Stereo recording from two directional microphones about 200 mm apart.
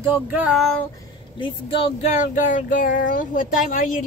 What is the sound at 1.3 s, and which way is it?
Speech, 25° left (ahead or behind).